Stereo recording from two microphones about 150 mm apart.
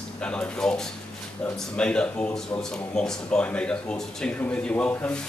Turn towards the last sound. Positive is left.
turn(degrees=10)  # may be behind; listen again after turning